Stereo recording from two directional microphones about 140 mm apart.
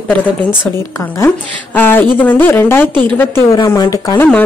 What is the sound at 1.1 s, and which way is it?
A woman's voice, 15° left (ahead or behind).